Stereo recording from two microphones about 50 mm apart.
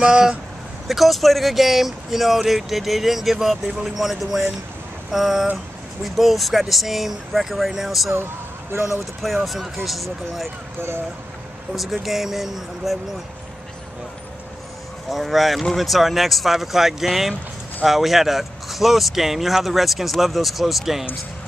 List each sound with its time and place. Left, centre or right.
0.0 s speech: centre
0.8 s speech: centre
8.7 s speech: right
9.2 s speech: centre
11.7 s speech: centre
15.0 s speech: centre